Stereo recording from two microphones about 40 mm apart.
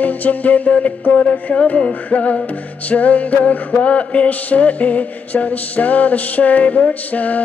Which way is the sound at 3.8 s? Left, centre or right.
Left.